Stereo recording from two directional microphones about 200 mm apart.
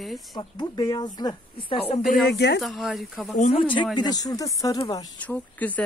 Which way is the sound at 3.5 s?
25° left (ahead or behind).